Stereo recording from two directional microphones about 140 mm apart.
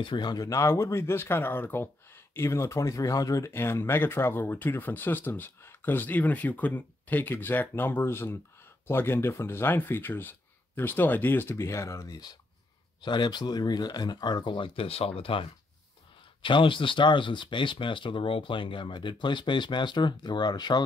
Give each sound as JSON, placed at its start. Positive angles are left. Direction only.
{"t": 0.0, "sound": "speech", "side_deg": 35}
{"t": 16.4, "sound": "speech", "side_deg": 35}